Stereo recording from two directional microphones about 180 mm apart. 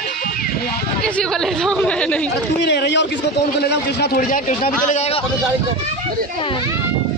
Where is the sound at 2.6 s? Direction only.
70° left (ahead or behind); by 5.3 s 35° left (ahead or behind).